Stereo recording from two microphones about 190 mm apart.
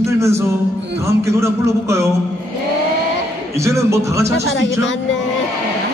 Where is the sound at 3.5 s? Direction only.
15° right (ahead or behind).